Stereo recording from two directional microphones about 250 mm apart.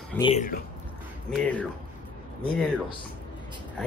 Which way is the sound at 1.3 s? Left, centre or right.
Centre.